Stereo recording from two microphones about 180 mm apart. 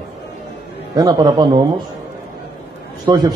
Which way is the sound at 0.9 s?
20° right (ahead or behind).